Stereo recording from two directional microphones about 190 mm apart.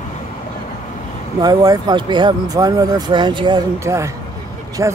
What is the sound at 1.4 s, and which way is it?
Speech, 20° right (ahead or behind).